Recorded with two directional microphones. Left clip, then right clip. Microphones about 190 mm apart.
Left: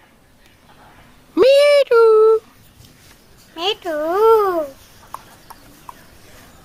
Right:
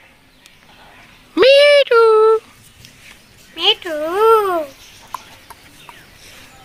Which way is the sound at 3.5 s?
60° left (ahead or behind).